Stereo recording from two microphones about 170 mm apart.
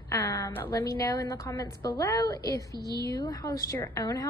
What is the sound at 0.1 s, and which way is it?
A woman's voice, 20° left (ahead or behind).